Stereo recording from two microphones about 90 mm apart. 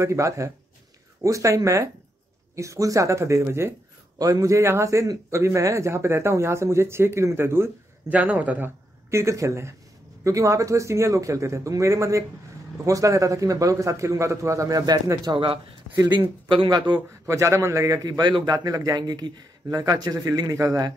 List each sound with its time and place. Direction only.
0.0 s a man's voice: 35° right (ahead or behind)
4.2 s a man's voice: 40° right (ahead or behind)
8.1 s speech: 15° right (ahead or behind)
9.1 s a man's voice: 35° right (ahead or behind)
15.3 s speech: 80° right
16.6 s a man's voice: 50° right (ahead or behind)
17.3 s a man's voice: 35° right (ahead or behind)